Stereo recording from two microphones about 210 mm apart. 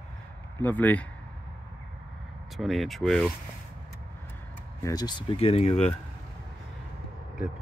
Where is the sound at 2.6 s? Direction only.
Centre (ahead or behind).